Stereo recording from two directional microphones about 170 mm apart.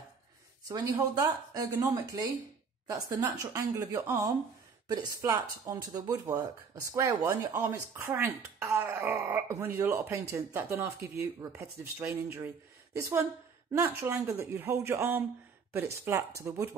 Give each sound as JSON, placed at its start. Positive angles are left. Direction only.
{"t": 0.7, "sound": "a woman's voice", "side_deg": -20}